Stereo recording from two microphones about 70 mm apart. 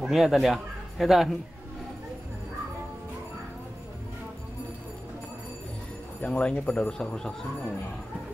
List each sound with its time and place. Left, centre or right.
0.0 s speech: centre
6.2 s speech: centre